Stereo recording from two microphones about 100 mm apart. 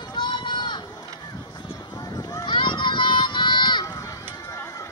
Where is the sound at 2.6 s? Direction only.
55° left (ahead or behind).